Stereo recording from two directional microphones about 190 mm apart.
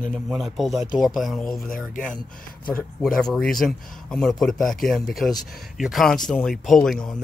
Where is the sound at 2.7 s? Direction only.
5° left (ahead or behind).